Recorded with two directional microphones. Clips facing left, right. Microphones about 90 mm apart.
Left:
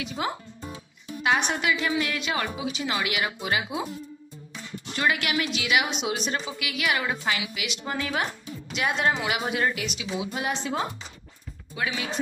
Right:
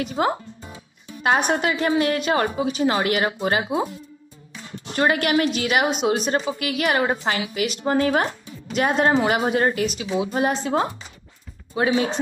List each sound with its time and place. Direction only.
0.0 s a woman's voice: 40° right (ahead or behind)